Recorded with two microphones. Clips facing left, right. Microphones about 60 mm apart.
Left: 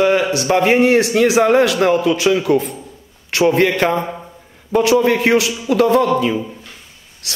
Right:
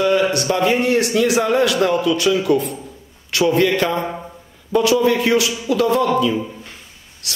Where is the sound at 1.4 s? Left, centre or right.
Left.